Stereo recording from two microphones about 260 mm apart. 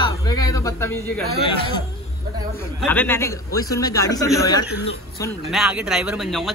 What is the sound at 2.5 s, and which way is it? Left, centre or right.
Speech, centre.